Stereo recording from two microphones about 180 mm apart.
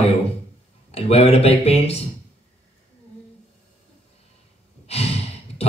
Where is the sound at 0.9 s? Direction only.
35° left (ahead or behind).